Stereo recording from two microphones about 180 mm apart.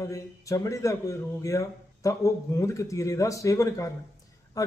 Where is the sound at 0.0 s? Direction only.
15° left (ahead or behind).